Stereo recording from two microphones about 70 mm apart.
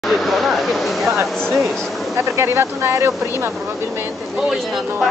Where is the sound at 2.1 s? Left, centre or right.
Right.